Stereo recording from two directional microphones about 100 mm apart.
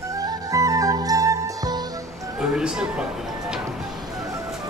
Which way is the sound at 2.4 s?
10° right (ahead or behind).